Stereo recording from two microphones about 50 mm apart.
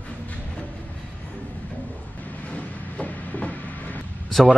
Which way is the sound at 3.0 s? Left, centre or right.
Left.